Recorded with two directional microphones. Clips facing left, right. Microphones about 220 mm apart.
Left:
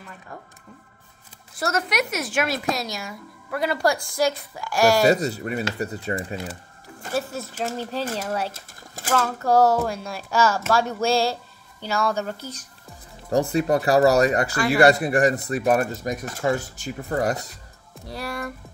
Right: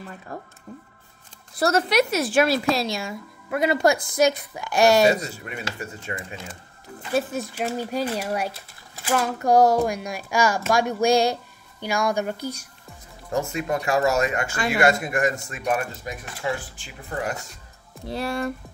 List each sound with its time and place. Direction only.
0.3 s speech: 35° right (ahead or behind)
1.6 s a woman's voice: 30° right (ahead or behind)
5.2 s speech: 35° left (ahead or behind)
7.2 s speech: 15° right (ahead or behind)
8.5 s a sound: 45° left (ahead or behind)
9.1 s speech: 15° right (ahead or behind)
13.3 s speech: 35° left (ahead or behind)
18.0 s a woman's voice: 25° right (ahead or behind)